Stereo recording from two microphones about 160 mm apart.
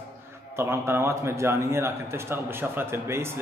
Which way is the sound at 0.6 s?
15° right (ahead or behind).